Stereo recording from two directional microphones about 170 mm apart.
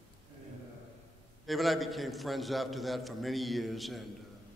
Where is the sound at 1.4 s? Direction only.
Centre (ahead or behind).